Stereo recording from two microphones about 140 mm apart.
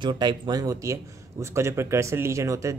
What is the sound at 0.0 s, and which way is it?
Speech, 30° right (ahead or behind).